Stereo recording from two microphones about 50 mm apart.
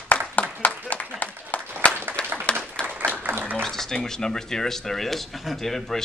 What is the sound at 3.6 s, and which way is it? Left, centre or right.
Speech, centre.